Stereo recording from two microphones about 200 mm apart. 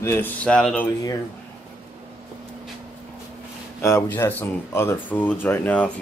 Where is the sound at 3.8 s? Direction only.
10° left (ahead or behind).